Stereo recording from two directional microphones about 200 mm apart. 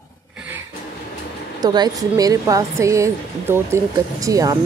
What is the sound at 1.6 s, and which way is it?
A woman's voice, 20° right (ahead or behind).